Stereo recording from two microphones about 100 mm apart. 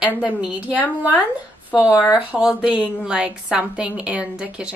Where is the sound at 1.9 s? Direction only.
35° left (ahead or behind).